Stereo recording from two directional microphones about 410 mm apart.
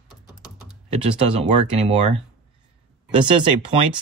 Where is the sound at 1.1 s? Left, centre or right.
Centre.